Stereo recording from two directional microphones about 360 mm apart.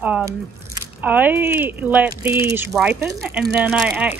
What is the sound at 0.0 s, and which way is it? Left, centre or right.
Speech, centre.